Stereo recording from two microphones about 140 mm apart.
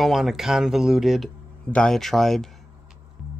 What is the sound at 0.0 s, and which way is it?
Speech, centre (ahead or behind).